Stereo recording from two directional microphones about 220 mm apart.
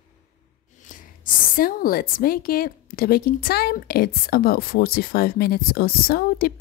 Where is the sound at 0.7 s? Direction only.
35° left (ahead or behind).